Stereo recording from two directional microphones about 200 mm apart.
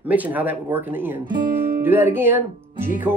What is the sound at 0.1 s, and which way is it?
Speech, 10° right (ahead or behind).